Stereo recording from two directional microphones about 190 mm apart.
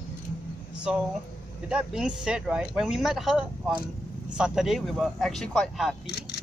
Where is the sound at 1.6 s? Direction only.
5° right (ahead or behind).